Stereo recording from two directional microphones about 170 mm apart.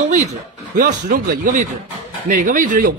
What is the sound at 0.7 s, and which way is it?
Speech, 50° right (ahead or behind).